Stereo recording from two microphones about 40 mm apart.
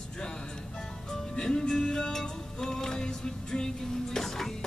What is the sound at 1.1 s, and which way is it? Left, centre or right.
Music, centre.